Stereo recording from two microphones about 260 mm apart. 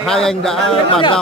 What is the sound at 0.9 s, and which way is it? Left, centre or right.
Speech, centre.